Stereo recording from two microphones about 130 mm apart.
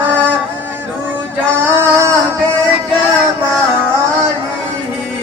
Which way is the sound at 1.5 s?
15° right (ahead or behind).